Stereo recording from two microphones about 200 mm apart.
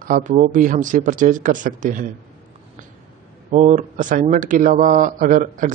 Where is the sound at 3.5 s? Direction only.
35° right (ahead or behind).